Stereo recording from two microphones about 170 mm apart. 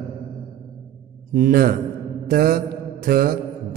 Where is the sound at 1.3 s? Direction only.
55° right (ahead or behind).